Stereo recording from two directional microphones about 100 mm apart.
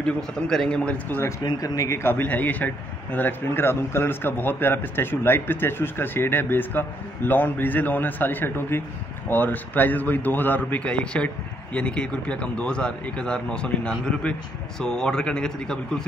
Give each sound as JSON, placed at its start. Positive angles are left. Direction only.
{"t": 0.0, "sound": "speech", "side_deg": 5}
{"t": 1.4, "sound": "speech", "side_deg": 40}
{"t": 2.0, "sound": "a man's voice", "side_deg": 20}